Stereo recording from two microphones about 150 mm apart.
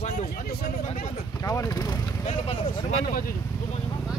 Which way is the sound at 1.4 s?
20° left (ahead or behind).